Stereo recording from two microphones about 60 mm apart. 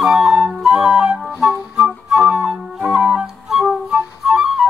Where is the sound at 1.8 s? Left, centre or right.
Centre.